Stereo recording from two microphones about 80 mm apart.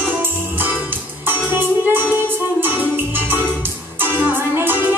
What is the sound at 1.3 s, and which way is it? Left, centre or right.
Music, right.